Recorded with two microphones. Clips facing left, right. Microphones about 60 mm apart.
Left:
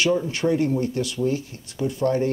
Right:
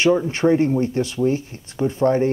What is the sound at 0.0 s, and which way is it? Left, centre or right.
Speech, right.